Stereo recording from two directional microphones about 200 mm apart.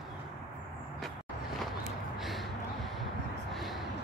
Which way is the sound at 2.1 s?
Centre (ahead or behind).